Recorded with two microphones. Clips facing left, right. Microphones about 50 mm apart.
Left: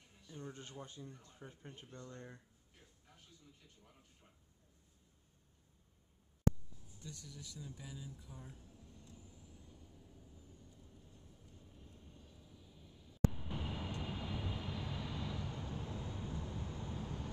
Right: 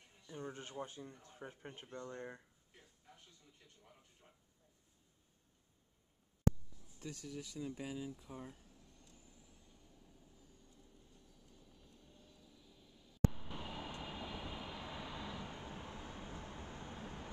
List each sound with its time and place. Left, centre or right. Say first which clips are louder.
0.3 s speech: right 3 dB; right
7.0 s speech: right 5 dB; right
7.2 s speech: right 6 dB; right
7.6 s speech: right 9 dB; right
8.8 s vehicle: left 5 dB; centre
11.6 s vehicle: left 3 dB; left; by 13.2 s centre
13.3 s vehicle: left 3 dB; centre; by 17.3 s right